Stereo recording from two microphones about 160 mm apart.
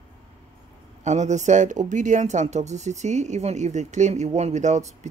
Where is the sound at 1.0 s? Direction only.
45° right (ahead or behind).